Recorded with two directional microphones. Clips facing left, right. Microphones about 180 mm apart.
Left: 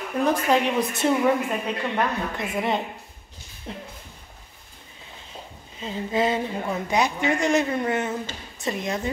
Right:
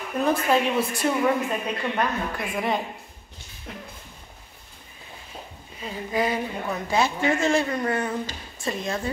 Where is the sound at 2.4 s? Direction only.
25° left (ahead or behind).